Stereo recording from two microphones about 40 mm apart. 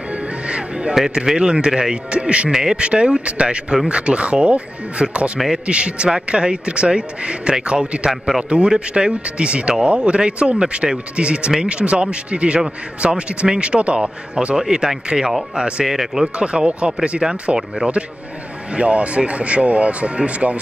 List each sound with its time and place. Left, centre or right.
0.1 s music: right
1.1 s speech: centre
2.5 s speech: centre
2.8 s speech: right
8.1 s speech: centre
8.5 s speech: right; by 16.3 s centre
16.3 s speech: right
18.7 s speech: right